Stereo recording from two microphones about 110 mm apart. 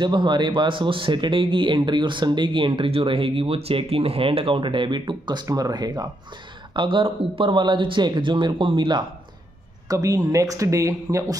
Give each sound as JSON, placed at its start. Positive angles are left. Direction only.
{"t": 0.0, "sound": "speech", "side_deg": -45}
{"t": 6.7, "sound": "speech", "side_deg": -50}
{"t": 9.8, "sound": "speech", "side_deg": -30}